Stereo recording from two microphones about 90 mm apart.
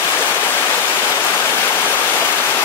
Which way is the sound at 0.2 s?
20° left (ahead or behind).